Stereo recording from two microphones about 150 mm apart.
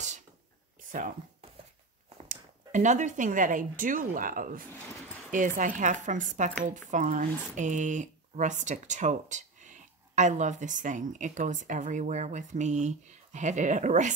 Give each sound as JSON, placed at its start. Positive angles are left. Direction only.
{"t": 2.2, "sound": "speech", "side_deg": -55}